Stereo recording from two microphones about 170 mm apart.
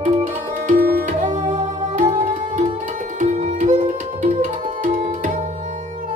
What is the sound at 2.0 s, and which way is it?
Music, 45° right (ahead or behind).